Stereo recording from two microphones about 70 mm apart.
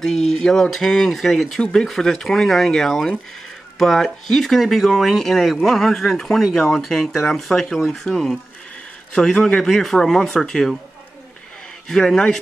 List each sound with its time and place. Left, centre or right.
0.0 s speech: centre
11.9 s speech: centre